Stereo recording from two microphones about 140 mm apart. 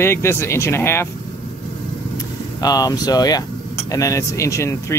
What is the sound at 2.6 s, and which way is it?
Speech, 25° left (ahead or behind).